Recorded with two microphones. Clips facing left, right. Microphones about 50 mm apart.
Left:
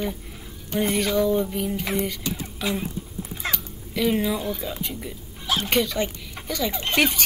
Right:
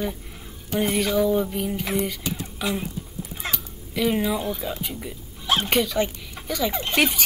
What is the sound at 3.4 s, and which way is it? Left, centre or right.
Cat, centre.